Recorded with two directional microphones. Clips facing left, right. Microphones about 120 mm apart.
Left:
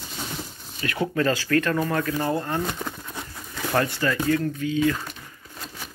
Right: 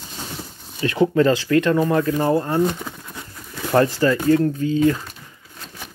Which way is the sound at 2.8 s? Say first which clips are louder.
Even; 5° left (ahead or behind).